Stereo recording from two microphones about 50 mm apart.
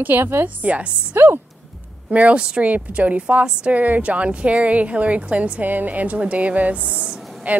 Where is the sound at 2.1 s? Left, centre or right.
Right.